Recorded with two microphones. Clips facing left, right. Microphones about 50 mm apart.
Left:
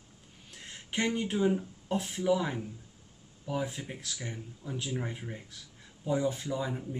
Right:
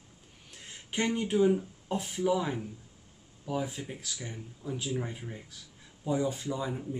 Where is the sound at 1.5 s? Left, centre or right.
Centre.